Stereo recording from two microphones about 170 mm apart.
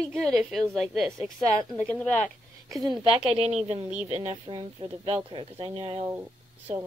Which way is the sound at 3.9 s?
10° right (ahead or behind).